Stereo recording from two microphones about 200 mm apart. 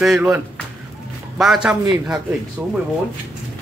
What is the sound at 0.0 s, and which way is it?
Speech, 5° right (ahead or behind).